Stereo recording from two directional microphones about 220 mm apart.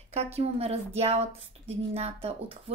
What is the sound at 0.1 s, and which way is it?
Speech, 30° right (ahead or behind).